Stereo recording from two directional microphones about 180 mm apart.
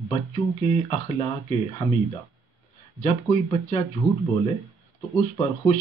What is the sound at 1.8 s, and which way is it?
Speech, 20° left (ahead or behind).